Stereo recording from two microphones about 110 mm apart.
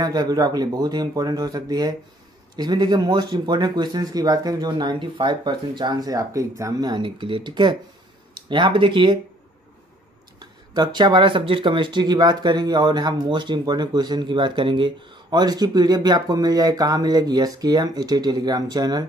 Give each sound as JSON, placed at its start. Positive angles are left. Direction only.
{"t": 0.0, "sound": "speech", "side_deg": -40}
{"t": 10.4, "sound": "speech", "side_deg": -40}